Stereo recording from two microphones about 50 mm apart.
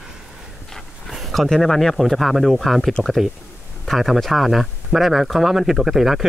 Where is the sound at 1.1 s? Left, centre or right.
Centre.